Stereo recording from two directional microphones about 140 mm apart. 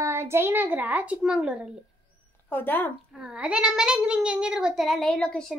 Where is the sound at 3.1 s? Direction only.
5° right (ahead or behind).